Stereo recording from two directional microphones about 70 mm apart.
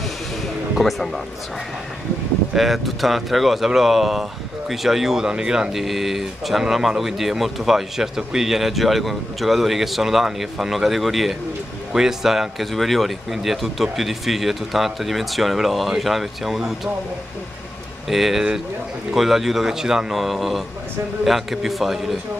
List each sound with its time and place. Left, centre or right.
0.7 s speech: centre
2.5 s speech: centre
18.0 s speech: centre